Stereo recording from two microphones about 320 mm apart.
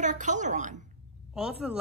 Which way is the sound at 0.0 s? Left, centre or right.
Right.